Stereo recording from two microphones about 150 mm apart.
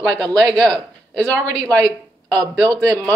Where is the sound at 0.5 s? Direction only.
5° left (ahead or behind).